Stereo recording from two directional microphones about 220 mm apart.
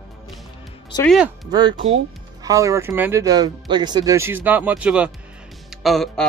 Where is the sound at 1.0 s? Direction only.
Centre (ahead or behind).